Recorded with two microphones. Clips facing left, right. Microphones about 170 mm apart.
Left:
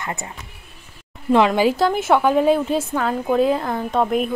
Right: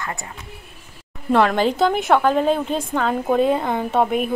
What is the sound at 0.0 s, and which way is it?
Speech, 25° left (ahead or behind).